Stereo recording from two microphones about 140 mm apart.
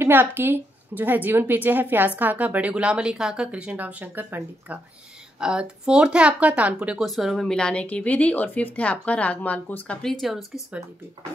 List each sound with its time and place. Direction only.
0.0 s a woman's voice: 15° right (ahead or behind); by 10.1 s 10° left (ahead or behind)
10.2 s speech: centre (ahead or behind)